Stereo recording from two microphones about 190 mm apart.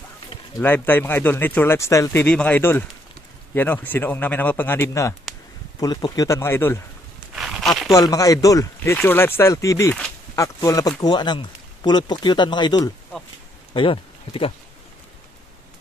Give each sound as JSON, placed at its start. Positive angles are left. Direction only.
{"t": 0.6, "sound": "speech", "side_deg": 10}
{"t": 7.3, "sound": "a sound", "side_deg": 0}
{"t": 7.9, "sound": "speech", "side_deg": 20}